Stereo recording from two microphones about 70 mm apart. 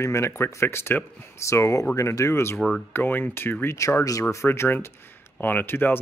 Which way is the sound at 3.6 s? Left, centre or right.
Left.